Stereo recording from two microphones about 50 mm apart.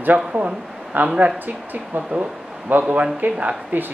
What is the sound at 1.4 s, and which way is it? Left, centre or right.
Speech, right.